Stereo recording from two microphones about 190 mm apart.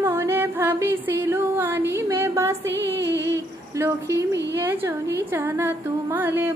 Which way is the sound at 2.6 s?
65° right (ahead or behind).